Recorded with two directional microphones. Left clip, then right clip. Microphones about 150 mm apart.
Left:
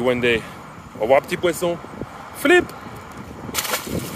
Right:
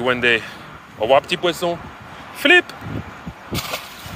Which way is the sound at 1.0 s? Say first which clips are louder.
Right 1 dB; 20° left (ahead or behind).